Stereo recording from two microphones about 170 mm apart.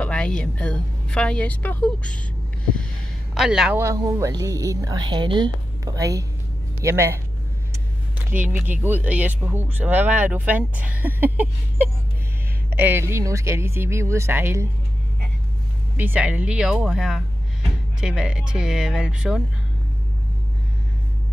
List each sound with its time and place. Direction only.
0.0 s speech: 5° left (ahead or behind)
3.3 s speech: 5° right (ahead or behind)
3.8 s a woman's voice: 20° right (ahead or behind)
8.4 s speech: 10° right (ahead or behind)
16.0 s speech: 10° right (ahead or behind)